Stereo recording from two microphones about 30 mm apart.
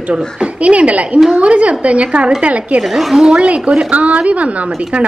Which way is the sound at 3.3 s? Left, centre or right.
Right.